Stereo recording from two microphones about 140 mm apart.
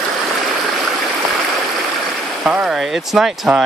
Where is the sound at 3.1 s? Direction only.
5° right (ahead or behind).